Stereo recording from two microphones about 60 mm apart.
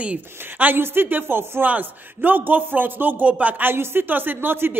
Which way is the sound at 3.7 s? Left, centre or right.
Right.